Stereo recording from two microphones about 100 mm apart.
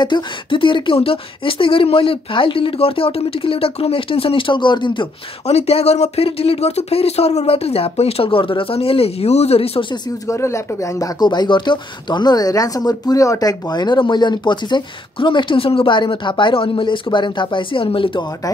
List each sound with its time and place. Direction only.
0.0 s speech: 50° left (ahead or behind)
5.5 s speech: 90° left
10.2 s speech: 30° left (ahead or behind)
11.1 s speech: 45° left (ahead or behind); by 18.2 s 60° left (ahead or behind)